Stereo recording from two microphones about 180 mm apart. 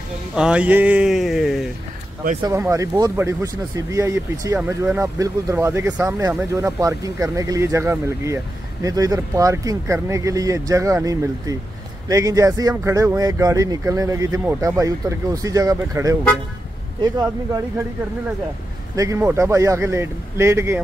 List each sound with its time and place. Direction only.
0.4 s speech: 5° right (ahead or behind)
2.4 s speech: 15° right (ahead or behind)
18.9 s speech: 15° right (ahead or behind)